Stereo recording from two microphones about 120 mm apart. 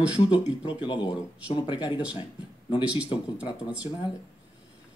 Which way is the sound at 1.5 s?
45° left (ahead or behind).